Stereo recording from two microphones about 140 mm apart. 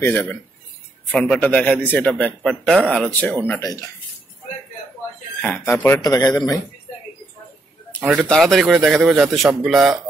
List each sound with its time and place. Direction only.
0.0 s a man's voice: 10° left (ahead or behind)
3.6 s speech: 25° left (ahead or behind)
5.4 s speech: 10° left (ahead or behind); by 6.6 s 30° left (ahead or behind)
8.1 s a man's voice: centre (ahead or behind)